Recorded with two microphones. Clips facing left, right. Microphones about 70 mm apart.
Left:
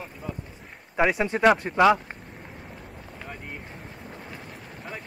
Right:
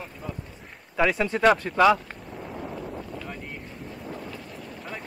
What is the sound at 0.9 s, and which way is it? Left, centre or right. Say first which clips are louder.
Speech: even; left.